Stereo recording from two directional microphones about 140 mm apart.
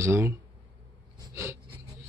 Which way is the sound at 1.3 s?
20° right (ahead or behind).